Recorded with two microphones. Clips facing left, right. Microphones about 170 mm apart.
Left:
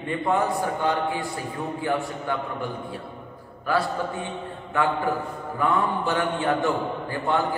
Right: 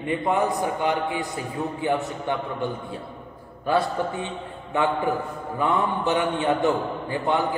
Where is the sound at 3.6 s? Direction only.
20° right (ahead or behind).